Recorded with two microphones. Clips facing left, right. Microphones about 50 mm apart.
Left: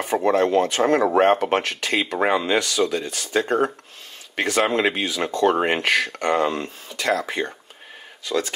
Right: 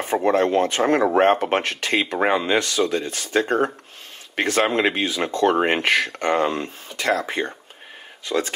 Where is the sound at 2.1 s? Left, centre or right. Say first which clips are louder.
Left 1 dB; centre.